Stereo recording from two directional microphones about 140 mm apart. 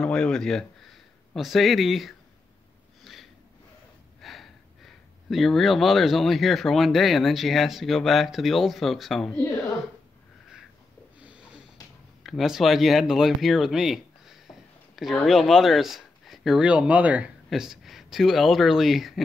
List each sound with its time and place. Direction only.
0.0 s speech: 5° left (ahead or behind)
3.0 s snort: centre (ahead or behind)
5.3 s speech: centre (ahead or behind)
11.1 s snort: 10° right (ahead or behind)
12.2 s speech: centre (ahead or behind)